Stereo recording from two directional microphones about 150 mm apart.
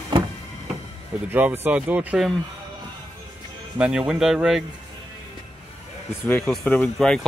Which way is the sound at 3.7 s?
5° right (ahead or behind).